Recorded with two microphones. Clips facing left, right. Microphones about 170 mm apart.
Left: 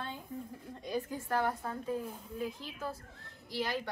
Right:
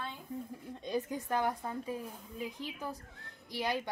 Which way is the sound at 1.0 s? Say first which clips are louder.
Even; 20° right (ahead or behind).